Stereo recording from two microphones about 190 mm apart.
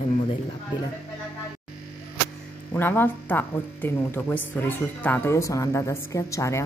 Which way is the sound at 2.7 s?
10° left (ahead or behind).